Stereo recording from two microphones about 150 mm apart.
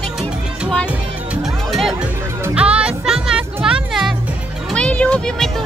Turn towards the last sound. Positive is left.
turn(degrees=5)  # may be behind; listen again after turning